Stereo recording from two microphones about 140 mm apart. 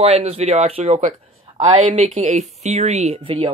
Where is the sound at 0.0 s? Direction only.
50° right (ahead or behind).